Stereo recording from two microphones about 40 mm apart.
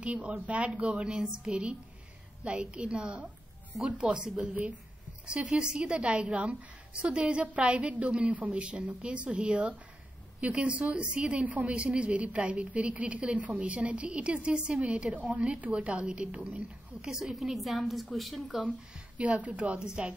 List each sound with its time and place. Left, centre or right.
0.0 s a woman's voice: right
4.4 s a woman's voice: right
5.2 s a woman's voice: right; by 18.6 s centre
19.1 s a woman's voice: right
19.8 s a woman's voice: centre